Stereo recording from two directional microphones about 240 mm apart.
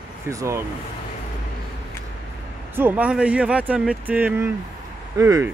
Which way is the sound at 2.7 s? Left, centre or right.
Centre.